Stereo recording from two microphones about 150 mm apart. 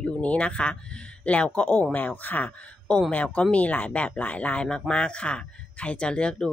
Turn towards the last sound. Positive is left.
turn(degrees=5)  # may be behind; listen again after turning